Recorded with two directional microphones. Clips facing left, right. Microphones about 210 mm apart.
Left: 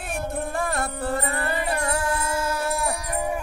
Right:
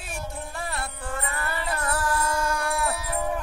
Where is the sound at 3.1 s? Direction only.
10° left (ahead or behind).